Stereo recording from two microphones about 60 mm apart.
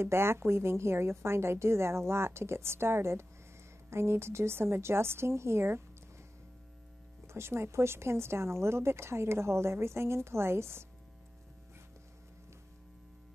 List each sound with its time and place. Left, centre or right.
0.0 s speech: right
7.2 s speech: right